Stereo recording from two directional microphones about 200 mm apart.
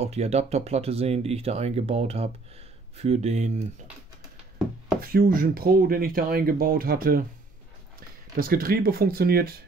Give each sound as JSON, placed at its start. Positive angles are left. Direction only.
{"t": 0.0, "sound": "speech", "side_deg": -35}
{"t": 5.0, "sound": "speech", "side_deg": -45}
{"t": 8.4, "sound": "speech", "side_deg": -50}